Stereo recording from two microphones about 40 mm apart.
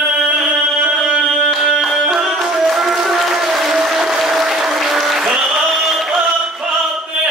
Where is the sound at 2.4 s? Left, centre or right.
Centre.